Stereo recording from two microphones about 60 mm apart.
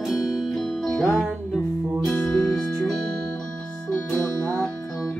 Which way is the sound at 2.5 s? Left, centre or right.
Centre.